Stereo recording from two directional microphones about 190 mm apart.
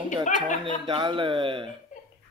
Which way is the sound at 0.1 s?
40° left (ahead or behind).